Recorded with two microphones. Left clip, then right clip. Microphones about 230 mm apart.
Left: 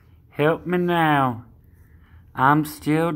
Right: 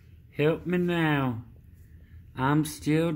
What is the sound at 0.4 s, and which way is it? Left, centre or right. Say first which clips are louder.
Speech: left 5 dB; centre.